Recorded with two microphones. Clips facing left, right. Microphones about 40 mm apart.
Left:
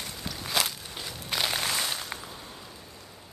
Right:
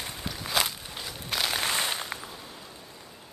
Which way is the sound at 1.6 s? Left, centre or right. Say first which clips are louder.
Right 2 dB; right.